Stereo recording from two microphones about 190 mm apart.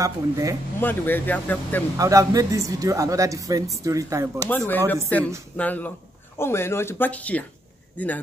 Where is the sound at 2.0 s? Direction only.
15° right (ahead or behind).